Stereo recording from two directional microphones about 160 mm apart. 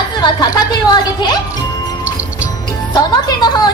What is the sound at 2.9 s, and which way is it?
Speech, 25° left (ahead or behind).